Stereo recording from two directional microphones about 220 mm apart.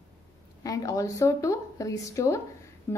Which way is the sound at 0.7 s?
15° left (ahead or behind).